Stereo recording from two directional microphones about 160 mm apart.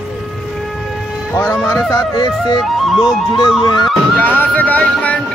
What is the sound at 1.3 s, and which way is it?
Speech, 15° left (ahead or behind).